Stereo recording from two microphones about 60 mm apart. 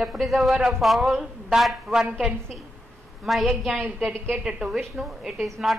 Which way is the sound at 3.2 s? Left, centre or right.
Centre.